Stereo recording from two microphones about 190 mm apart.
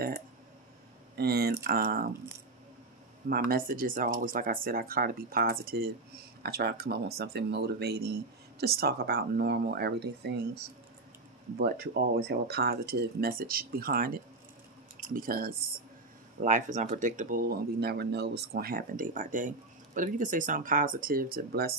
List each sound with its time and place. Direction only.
1.1 s speech: 55° right (ahead or behind)
3.3 s speech: 50° right (ahead or behind)